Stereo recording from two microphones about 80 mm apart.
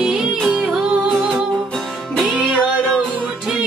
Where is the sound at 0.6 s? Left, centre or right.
Centre.